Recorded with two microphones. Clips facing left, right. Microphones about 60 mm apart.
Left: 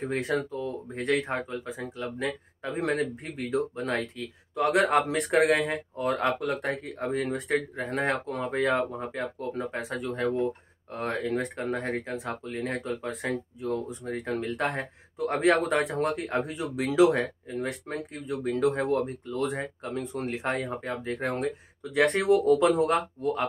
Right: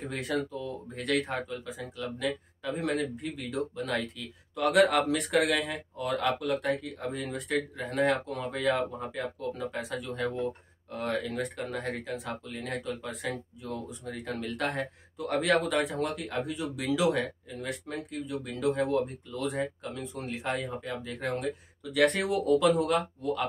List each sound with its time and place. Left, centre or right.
0.1 s speech: left